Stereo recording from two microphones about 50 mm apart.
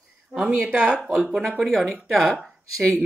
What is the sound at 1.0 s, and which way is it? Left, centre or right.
Speech, centre.